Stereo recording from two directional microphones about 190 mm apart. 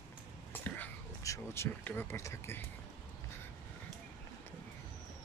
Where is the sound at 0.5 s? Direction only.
10° left (ahead or behind).